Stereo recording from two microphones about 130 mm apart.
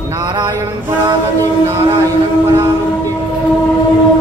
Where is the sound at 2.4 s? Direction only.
25° right (ahead or behind).